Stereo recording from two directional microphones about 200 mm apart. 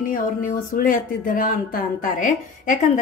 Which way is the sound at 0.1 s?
45° left (ahead or behind).